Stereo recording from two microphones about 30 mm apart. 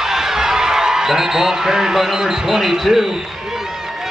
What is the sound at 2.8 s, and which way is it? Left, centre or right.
Speech, centre.